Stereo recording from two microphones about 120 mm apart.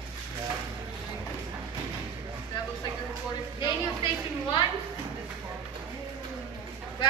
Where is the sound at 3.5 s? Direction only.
40° left (ahead or behind).